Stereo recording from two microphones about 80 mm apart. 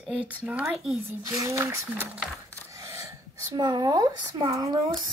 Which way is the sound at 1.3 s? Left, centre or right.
Right.